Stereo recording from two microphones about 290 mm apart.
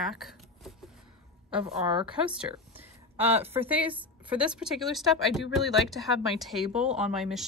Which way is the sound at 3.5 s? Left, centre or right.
Centre.